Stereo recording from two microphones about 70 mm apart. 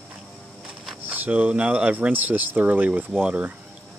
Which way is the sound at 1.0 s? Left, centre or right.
Right.